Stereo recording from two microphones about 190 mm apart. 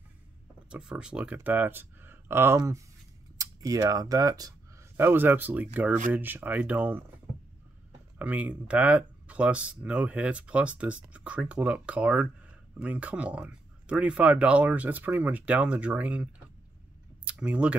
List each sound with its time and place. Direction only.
0.7 s speech: 5° right (ahead or behind)
8.2 s speech: 5° right (ahead or behind)
17.2 s a sound: 5° right (ahead or behind)